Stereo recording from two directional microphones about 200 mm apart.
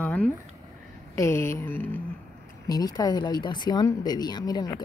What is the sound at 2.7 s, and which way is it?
Speech, 20° left (ahead or behind).